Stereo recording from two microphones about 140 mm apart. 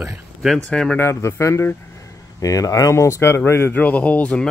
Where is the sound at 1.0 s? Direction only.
20° left (ahead or behind).